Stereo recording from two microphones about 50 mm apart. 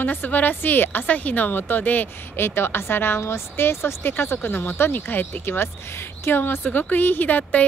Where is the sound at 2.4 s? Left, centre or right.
Left.